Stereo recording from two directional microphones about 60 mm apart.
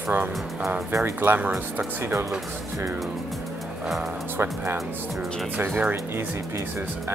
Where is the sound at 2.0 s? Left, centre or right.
Right.